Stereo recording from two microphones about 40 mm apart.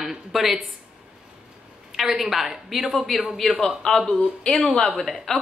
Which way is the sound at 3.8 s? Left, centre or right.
Centre.